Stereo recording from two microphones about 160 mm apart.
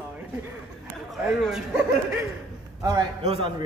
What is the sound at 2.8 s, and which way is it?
Speech, 25° right (ahead or behind).